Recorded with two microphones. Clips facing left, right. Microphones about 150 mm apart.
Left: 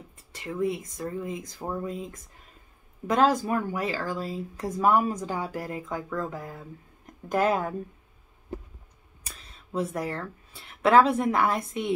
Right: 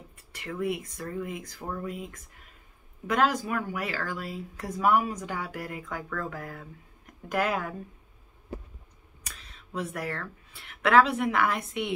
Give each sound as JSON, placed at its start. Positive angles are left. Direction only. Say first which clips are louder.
{"t": 0.4, "sound": "speech", "louder": "left 2 dB", "side_deg": 25}
{"t": 9.7, "sound": "speech", "louder": "left 4 dB", "side_deg": 25}
{"t": 11.1, "sound": "a woman's voice", "louder": "left 2 dB", "side_deg": 35}